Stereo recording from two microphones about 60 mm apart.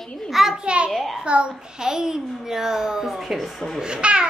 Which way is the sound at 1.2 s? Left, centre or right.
Centre.